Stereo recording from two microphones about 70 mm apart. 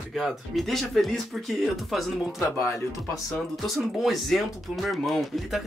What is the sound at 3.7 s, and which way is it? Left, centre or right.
Speech, centre.